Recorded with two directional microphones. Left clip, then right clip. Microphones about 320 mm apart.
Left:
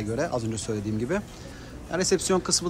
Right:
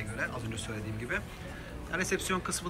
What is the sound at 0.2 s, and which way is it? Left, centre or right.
Speech, centre.